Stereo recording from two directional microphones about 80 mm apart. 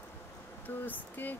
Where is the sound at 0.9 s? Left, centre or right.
Left.